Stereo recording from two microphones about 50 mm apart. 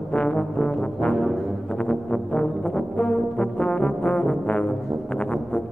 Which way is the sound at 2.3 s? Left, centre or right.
Left.